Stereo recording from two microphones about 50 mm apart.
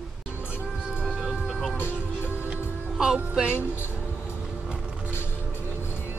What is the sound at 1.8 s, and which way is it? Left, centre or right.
Speech, right.